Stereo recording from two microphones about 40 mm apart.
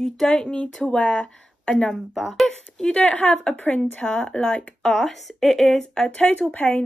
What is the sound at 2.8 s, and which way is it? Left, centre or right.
Speech, left.